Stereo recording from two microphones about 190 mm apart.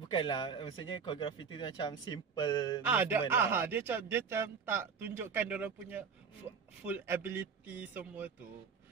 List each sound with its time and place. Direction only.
0.1 s a man's voice: 25° left (ahead or behind)
2.8 s speech: 10° right (ahead or behind)